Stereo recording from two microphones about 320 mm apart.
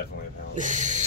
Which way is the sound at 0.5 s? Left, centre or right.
Right.